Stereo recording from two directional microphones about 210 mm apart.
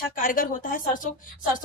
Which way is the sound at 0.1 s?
40° left (ahead or behind).